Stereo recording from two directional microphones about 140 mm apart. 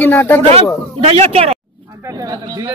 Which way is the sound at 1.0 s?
45° right (ahead or behind).